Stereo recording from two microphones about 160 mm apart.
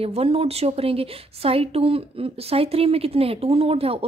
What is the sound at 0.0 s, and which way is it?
A woman's voice, 40° right (ahead or behind).